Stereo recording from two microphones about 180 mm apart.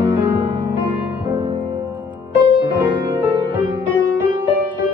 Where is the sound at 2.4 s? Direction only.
25° left (ahead or behind).